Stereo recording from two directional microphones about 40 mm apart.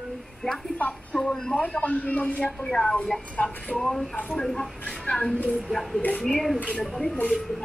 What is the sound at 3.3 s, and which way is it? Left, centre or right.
Speech, left.